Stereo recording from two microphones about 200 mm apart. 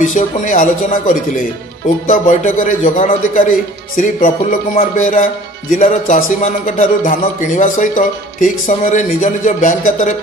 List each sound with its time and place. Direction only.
0.0 s a man's voice: 40° left (ahead or behind)